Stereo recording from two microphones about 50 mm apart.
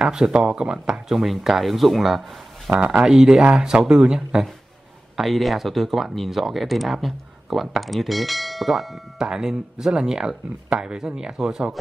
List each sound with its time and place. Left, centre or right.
0.0 s speech: centre
2.8 s speech: centre
5.1 s speech: centre